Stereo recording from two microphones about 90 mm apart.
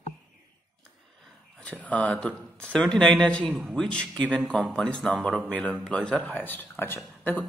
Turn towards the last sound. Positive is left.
turn(degrees=20)  # may be behind; listen again after turning